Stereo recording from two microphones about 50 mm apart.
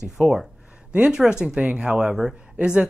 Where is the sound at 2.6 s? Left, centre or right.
Right.